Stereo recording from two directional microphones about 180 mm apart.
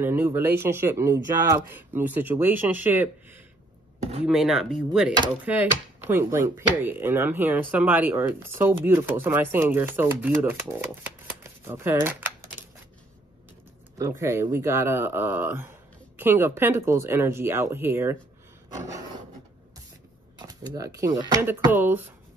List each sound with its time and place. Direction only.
0.0 s speech: 10° right (ahead or behind)
4.3 s speech: centre (ahead or behind)
11.4 s a sound: 15° right (ahead or behind)
14.2 s speech: 15° right (ahead or behind)
20.3 s speech: 20° right (ahead or behind)
21.5 s speech: 10° right (ahead or behind)